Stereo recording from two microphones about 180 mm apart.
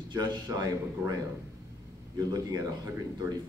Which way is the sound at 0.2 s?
20° right (ahead or behind).